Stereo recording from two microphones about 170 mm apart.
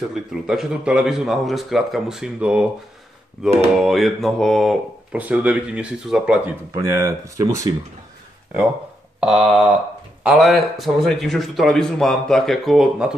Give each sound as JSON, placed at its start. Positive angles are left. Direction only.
{"t": 0.1, "sound": "a man's voice", "side_deg": 0}
{"t": 6.7, "sound": "speech", "side_deg": -15}
{"t": 9.2, "sound": "a man's voice", "side_deg": -5}